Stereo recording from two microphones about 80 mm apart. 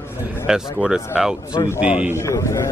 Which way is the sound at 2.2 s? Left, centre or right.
Left.